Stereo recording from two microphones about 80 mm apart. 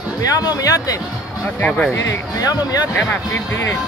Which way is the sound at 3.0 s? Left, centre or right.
Left.